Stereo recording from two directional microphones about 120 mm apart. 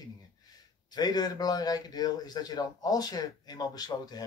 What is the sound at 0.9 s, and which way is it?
A man's voice, 35° left (ahead or behind).